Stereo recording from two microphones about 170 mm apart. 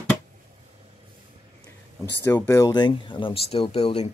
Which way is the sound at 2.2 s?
20° left (ahead or behind).